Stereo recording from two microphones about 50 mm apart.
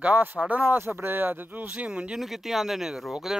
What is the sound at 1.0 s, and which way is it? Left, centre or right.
Speech, right.